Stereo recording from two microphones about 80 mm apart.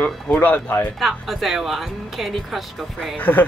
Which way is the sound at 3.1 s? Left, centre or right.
Left.